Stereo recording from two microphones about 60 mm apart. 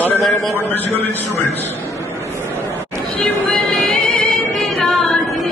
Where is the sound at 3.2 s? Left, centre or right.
Centre.